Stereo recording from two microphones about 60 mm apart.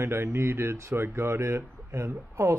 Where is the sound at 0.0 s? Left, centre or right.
Right.